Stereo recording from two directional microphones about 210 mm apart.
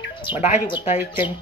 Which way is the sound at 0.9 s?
10° right (ahead or behind).